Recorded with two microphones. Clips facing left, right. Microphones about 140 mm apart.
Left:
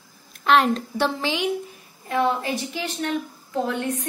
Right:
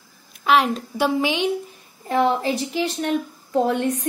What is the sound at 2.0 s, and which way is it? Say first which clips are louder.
Speech: right 3 dB; 30° right (ahead or behind).